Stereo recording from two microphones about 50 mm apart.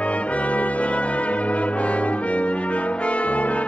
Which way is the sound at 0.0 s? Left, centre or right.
Left.